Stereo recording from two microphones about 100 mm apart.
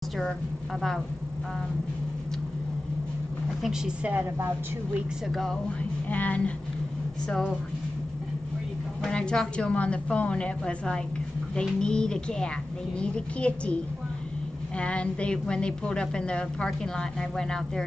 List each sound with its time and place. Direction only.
3.6 s a woman's voice: 10° right (ahead or behind)
5.3 s speech: 5° left (ahead or behind)
6.0 s a woman's voice: 15° left (ahead or behind)
7.2 s speech: 5° left (ahead or behind)
9.0 s a woman's voice: 10° left (ahead or behind)
14.8 s a woman's voice: 10° left (ahead or behind)